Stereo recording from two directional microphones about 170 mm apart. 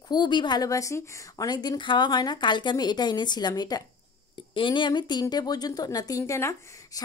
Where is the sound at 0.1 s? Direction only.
25° left (ahead or behind).